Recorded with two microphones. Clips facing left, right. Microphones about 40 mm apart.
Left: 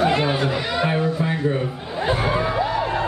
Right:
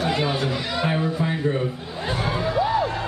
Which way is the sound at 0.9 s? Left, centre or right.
Centre.